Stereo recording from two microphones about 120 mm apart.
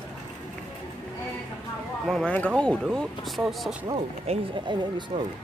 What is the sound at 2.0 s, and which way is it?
Speech, centre (ahead or behind).